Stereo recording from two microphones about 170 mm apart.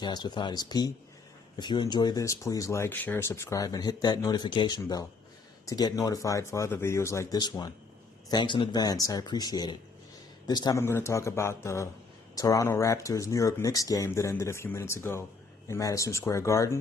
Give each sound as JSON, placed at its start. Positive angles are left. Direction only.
{"t": 0.0, "sound": "speech", "side_deg": 25}